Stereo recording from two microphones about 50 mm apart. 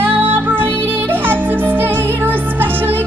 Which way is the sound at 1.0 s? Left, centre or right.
Right.